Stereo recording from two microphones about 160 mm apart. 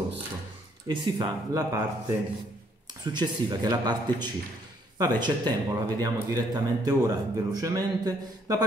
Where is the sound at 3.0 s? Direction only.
25° right (ahead or behind).